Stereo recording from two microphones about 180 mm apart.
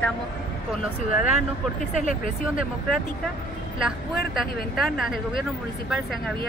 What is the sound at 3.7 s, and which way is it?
Speech, centre (ahead or behind).